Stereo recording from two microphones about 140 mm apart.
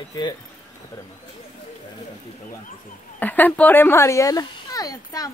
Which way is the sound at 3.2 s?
10° left (ahead or behind).